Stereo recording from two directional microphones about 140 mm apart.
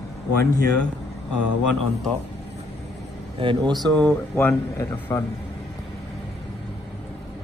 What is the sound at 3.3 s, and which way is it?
Speech, 35° right (ahead or behind).